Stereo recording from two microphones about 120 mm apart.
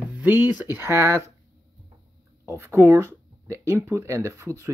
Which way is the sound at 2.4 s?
25° right (ahead or behind).